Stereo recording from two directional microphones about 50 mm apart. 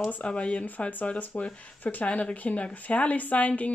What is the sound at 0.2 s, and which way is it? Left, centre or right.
Speech, left.